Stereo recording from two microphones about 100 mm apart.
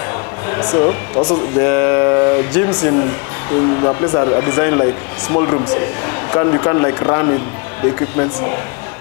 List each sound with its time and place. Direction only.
0.5 s speech: 25° left (ahead or behind)